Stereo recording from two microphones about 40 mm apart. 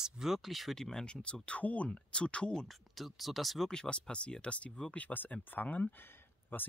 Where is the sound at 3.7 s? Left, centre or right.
Centre.